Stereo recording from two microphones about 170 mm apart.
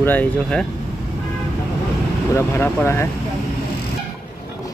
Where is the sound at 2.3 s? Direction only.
15° left (ahead or behind).